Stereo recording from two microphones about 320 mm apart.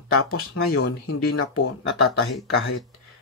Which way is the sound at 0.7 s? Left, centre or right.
Left.